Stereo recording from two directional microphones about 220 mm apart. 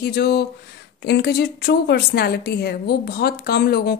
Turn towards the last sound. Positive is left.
turn(degrees=45)  # may be behind; listen again after turning